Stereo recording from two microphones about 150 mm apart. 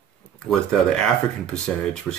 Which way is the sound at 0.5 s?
5° left (ahead or behind).